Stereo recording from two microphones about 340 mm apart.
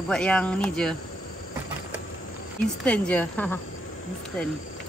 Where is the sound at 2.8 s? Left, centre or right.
Centre.